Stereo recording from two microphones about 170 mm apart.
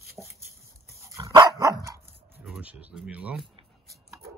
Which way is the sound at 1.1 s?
20° right (ahead or behind).